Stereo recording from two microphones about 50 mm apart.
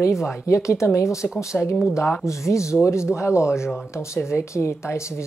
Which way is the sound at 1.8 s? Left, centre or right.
Left.